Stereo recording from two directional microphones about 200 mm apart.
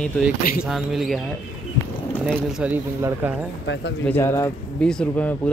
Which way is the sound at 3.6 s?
65° left (ahead or behind).